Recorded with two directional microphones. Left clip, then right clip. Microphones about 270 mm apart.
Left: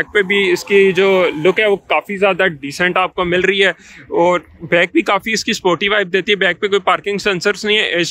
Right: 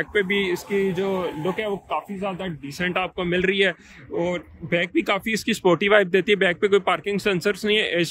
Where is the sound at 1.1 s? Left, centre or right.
Left.